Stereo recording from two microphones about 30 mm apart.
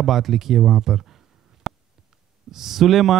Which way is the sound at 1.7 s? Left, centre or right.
Centre.